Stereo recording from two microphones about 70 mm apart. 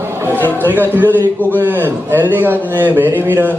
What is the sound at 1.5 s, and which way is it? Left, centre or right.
Speech, right.